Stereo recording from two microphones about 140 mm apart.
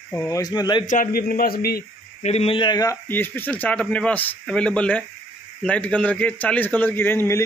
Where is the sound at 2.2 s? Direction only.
45° left (ahead or behind); by 3.0 s 30° left (ahead or behind).